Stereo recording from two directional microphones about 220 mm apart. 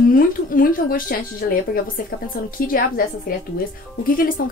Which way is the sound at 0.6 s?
40° left (ahead or behind).